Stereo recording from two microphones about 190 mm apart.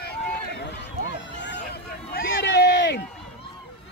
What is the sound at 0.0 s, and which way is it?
Run, 60° left (ahead or behind).